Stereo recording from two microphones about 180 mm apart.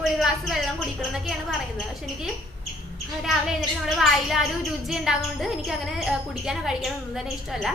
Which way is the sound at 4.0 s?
Centre (ahead or behind).